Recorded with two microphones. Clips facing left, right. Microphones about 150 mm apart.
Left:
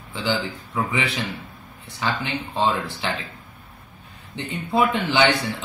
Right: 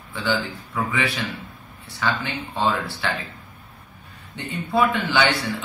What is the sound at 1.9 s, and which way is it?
A man's voice, 20° left (ahead or behind).